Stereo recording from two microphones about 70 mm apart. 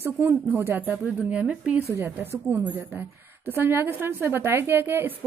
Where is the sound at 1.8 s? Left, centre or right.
Right.